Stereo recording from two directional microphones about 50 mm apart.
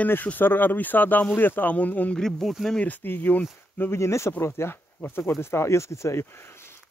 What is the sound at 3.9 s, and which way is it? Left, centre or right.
Speech, left.